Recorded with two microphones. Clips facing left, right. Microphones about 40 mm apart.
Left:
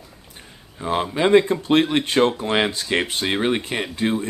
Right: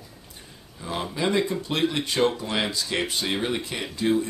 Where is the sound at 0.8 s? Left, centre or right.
Left.